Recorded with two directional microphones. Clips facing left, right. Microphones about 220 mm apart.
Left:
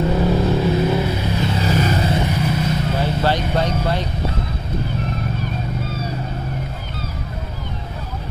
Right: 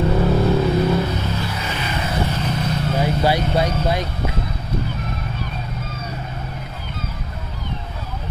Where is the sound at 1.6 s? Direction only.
40° left (ahead or behind).